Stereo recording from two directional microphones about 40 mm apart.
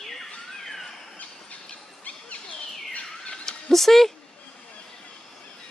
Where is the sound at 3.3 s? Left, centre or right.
Centre.